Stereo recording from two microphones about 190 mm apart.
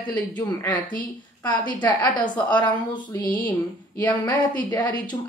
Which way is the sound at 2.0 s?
25° left (ahead or behind).